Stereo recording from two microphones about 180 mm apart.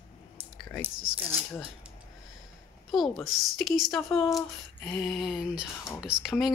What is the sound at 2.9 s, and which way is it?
Speech, centre (ahead or behind).